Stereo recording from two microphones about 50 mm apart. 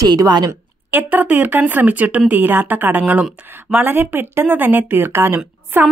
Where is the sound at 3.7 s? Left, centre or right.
Right.